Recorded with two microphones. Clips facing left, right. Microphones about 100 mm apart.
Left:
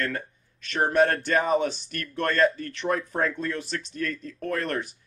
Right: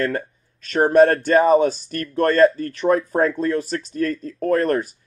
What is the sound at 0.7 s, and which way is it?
Speech, 40° right (ahead or behind).